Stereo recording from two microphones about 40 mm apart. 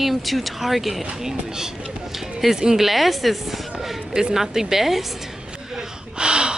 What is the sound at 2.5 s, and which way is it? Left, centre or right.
A woman's voice, centre.